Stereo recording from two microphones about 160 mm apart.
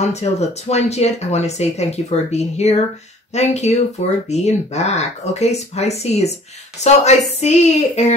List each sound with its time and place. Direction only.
0.0 s speech: 45° left (ahead or behind)